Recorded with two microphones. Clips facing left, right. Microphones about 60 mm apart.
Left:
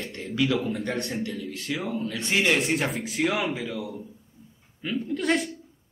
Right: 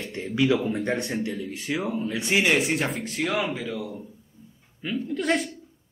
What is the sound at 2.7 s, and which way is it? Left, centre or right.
A man's voice, centre.